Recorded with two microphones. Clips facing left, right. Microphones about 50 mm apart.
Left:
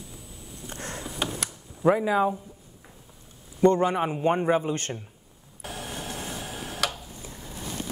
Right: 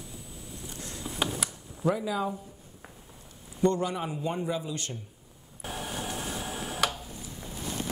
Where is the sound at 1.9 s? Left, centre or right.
Left.